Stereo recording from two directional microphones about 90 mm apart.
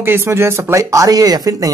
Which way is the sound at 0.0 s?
25° right (ahead or behind).